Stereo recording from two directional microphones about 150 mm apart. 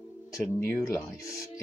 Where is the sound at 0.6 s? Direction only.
15° left (ahead or behind).